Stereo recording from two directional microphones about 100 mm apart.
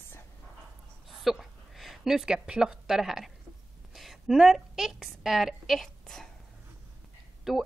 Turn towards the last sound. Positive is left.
turn(degrees=-5)  # may be behind; listen again after turning